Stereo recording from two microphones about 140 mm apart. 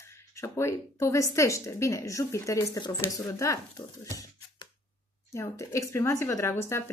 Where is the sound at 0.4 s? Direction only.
20° left (ahead or behind).